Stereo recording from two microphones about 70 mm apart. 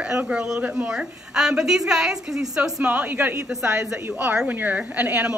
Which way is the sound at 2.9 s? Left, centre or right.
Right.